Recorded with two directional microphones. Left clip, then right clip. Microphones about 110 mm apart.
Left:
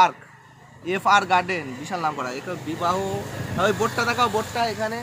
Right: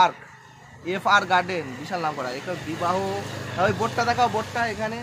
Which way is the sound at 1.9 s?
35° left (ahead or behind).